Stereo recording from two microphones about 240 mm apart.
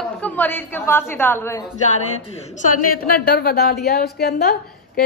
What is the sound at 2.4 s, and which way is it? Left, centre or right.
A woman's voice, left.